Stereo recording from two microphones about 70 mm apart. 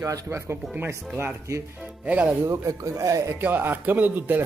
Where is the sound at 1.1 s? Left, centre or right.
Right.